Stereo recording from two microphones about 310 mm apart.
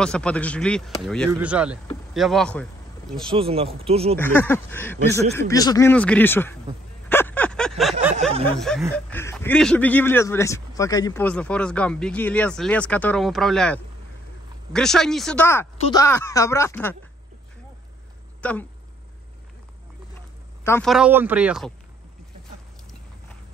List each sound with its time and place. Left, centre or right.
0.0 s speech: centre
3.3 s speech: centre
4.2 s speech: centre
7.1 s a sound: centre
8.5 s speech: centre
18.4 s speech: centre
20.6 s speech: centre